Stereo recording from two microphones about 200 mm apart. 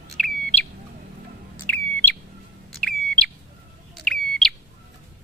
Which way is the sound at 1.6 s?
10° left (ahead or behind).